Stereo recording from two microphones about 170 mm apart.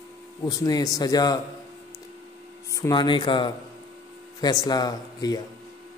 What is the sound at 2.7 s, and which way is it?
A man's voice, 20° left (ahead or behind).